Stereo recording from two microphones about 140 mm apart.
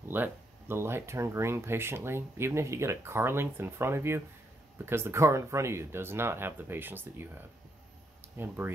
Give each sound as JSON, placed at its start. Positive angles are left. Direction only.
{"t": 0.1, "sound": "speech", "side_deg": -15}